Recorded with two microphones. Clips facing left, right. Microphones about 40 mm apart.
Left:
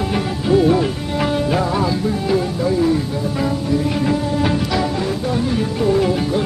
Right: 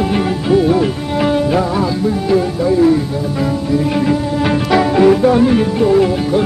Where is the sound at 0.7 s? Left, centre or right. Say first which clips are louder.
Right 3 dB; centre.